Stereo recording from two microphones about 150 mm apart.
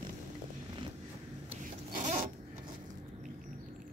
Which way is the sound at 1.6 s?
60° right (ahead or behind).